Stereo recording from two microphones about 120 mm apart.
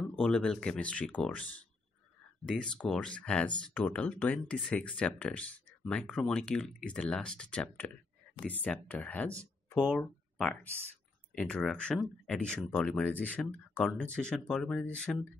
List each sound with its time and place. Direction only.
0.2 s speech: 5° left (ahead or behind)
9.8 s speech: 5° right (ahead or behind)